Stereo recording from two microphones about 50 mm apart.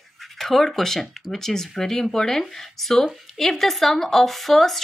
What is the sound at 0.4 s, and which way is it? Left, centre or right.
Speech, centre.